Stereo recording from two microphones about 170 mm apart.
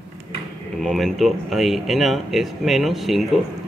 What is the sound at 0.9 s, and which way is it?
Speech, centre (ahead or behind).